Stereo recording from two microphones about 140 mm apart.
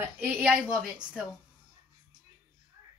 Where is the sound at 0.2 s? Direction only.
15° right (ahead or behind).